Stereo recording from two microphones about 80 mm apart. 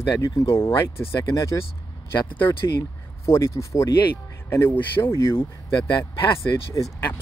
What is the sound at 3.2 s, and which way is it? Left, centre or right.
Speech, left.